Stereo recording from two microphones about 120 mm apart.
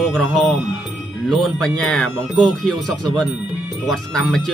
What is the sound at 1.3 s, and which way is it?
Speech, 5° left (ahead or behind).